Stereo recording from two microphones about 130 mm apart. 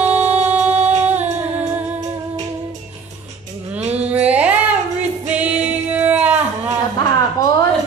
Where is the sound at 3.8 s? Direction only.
55° right (ahead or behind).